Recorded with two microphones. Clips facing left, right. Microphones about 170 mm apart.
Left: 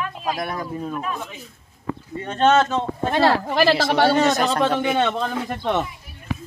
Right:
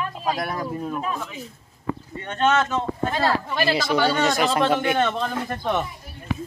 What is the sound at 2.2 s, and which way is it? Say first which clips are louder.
Speech: left 4 dB; 30° left (ahead or behind).